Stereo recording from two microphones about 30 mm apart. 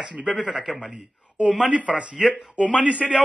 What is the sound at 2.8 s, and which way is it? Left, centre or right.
Speech, right.